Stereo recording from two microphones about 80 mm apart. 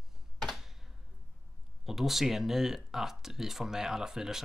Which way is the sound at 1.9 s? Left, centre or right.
Centre.